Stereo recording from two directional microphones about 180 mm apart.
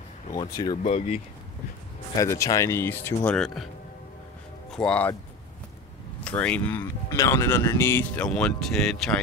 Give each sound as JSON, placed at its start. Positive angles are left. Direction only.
{"t": 0.8, "sound": "speech", "side_deg": 35}
{"t": 2.1, "sound": "speech", "side_deg": 20}
{"t": 3.3, "sound": "speech", "side_deg": 0}
{"t": 4.6, "sound": "speech", "side_deg": 5}
{"t": 6.2, "sound": "speech", "side_deg": 5}